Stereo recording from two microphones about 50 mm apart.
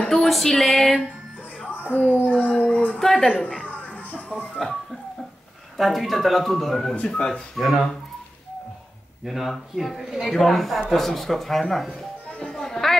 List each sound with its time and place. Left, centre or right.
0.1 s a sound: centre
1.8 s speech: left
3.0 s speech: centre
3.6 s music: left
4.6 s speech: centre
7.0 s speech: centre
7.5 s speech: centre
9.2 s speech: centre
12.4 s a sound: centre